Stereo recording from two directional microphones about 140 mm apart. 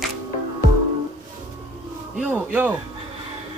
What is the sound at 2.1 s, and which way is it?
Speech, 10° right (ahead or behind).